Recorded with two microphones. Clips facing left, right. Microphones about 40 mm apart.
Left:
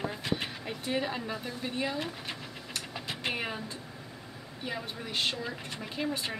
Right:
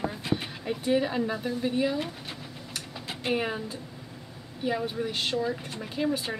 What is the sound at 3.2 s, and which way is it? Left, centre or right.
Speech, centre.